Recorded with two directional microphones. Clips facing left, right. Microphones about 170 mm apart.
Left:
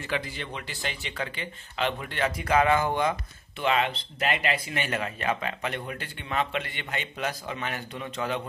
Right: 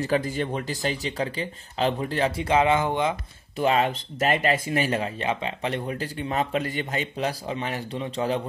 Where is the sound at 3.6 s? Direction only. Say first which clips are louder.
Right 4 dB; 40° right (ahead or behind).